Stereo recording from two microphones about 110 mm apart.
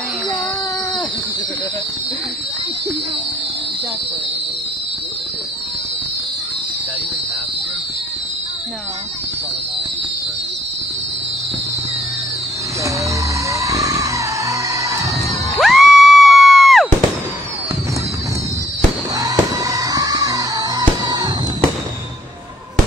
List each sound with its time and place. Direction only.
13.5 s music: 30° right (ahead or behind)
15.6 s music: centre (ahead or behind)
19.1 s music: 30° right (ahead or behind)